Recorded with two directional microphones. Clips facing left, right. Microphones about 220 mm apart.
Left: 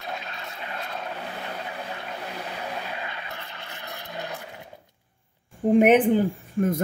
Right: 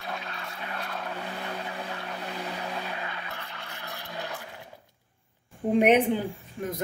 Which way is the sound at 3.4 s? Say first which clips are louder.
Left 1 dB; 20° left (ahead or behind).